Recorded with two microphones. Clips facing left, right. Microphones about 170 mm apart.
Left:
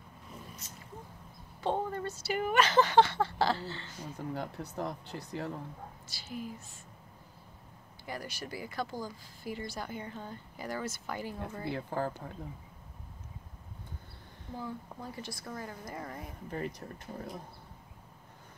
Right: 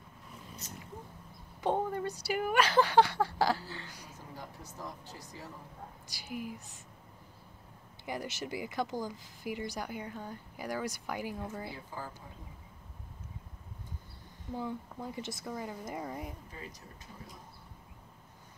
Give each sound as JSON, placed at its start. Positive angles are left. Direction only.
{"t": 1.6, "sound": "speech", "side_deg": -15}
{"t": 4.1, "sound": "speech", "side_deg": 65}
{"t": 6.0, "sound": "speech", "side_deg": -15}
{"t": 8.0, "sound": "speech", "side_deg": -20}
{"t": 11.7, "sound": "speech", "side_deg": 60}
{"t": 14.6, "sound": "speech", "side_deg": -15}
{"t": 16.4, "sound": "speech", "side_deg": 65}